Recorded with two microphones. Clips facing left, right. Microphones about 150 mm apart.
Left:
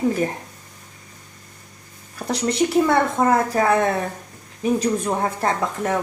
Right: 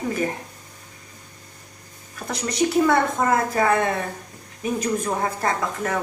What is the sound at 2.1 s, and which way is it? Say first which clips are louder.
A woman's voice: left 3 dB; 35° left (ahead or behind).